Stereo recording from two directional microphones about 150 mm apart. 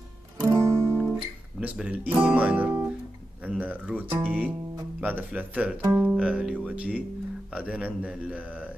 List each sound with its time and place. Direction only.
0.4 s music: 20° right (ahead or behind)
1.6 s speech: 10° right (ahead or behind)